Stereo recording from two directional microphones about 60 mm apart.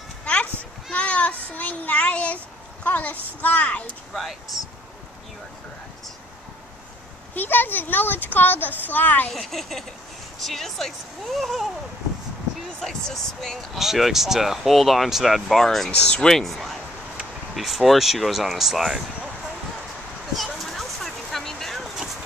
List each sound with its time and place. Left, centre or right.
0.2 s sheep: left
0.9 s a sound: left
4.1 s speech: centre
7.3 s a child's voice: left
9.3 s speech: centre
12.8 s speech: centre
15.9 s a woman's voice: left
16.3 s speech: centre
20.5 s vehicle: centre